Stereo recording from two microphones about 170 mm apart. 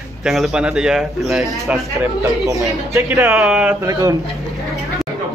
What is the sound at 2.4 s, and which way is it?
Speech, 20° right (ahead or behind).